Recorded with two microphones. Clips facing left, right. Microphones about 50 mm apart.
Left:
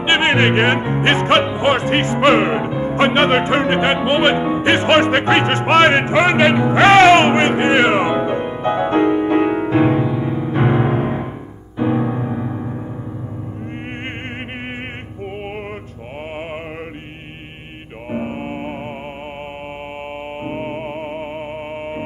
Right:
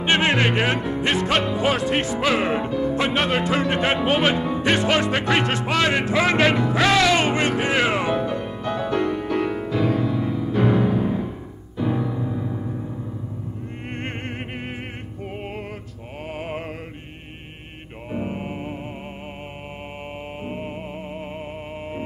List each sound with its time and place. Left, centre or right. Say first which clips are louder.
0.0 s music: left 4 dB; left
11.8 s music: left 6 dB; left
18.1 s music: left 4 dB; left
20.4 s music: left 7 dB; left